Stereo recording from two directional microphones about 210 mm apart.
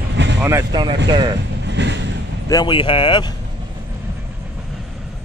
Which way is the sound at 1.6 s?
55° right (ahead or behind).